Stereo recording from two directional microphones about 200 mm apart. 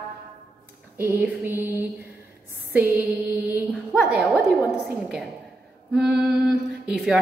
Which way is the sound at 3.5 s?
5° right (ahead or behind).